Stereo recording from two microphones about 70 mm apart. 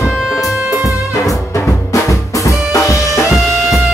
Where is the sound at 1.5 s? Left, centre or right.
Left.